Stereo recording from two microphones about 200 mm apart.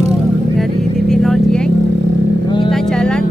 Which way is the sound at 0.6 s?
Centre (ahead or behind).